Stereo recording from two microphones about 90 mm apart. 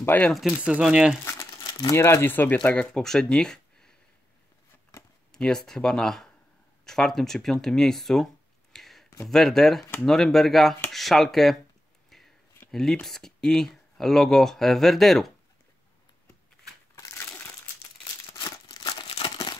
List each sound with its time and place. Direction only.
0.0 s speech: 20° left (ahead or behind)
0.3 s speech: centre (ahead or behind)
0.6 s speech: 15° right (ahead or behind)
1.2 s crumpling: 30° left (ahead or behind)
1.6 s crumpling: 50° left (ahead or behind)
2.0 s speech: 30° left (ahead or behind)
2.7 s speech: 10° left (ahead or behind)
5.3 s speech: 5° left (ahead or behind)
8.7 s a sound: 5° left (ahead or behind)
9.2 s speech: 5° left (ahead or behind)
12.7 s speech: 5° left (ahead or behind)
18.7 s crumpling: 60° left (ahead or behind)